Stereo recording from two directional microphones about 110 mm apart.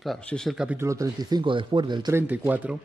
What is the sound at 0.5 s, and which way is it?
Speech, 10° right (ahead or behind).